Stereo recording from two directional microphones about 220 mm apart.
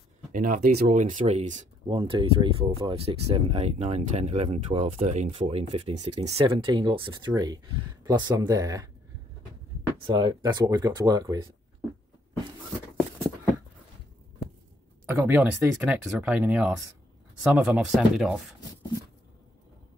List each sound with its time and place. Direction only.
0.3 s speech: 40° right (ahead or behind); by 8.8 s 15° right (ahead or behind)
9.9 s speech: 20° right (ahead or behind)
15.0 s speech: 10° right (ahead or behind)